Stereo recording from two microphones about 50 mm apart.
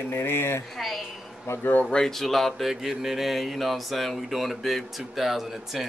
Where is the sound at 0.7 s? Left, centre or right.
Centre.